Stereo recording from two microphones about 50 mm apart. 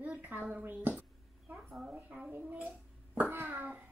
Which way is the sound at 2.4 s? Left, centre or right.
Right.